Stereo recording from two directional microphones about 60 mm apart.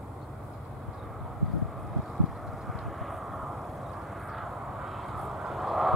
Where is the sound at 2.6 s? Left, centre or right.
Centre.